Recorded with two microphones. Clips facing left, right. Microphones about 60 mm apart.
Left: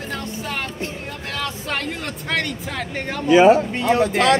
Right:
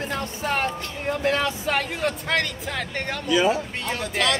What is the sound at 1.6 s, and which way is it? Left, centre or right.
Speech, centre.